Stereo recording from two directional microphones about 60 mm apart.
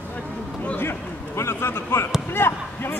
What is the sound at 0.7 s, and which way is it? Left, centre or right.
Speech, left.